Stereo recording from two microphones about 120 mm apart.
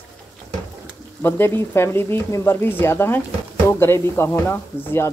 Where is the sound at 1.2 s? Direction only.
20° left (ahead or behind).